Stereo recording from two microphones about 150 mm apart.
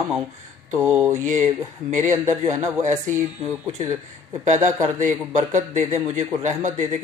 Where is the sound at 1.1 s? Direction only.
55° right (ahead or behind).